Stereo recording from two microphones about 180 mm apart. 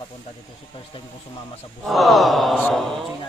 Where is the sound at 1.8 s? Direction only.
Centre (ahead or behind).